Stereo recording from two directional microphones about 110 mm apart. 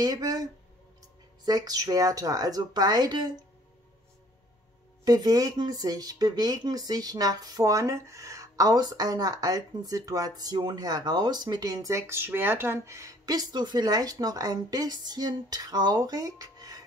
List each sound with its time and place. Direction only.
0.0 s speech: 35° right (ahead or behind)
5.0 s speech: 35° right (ahead or behind)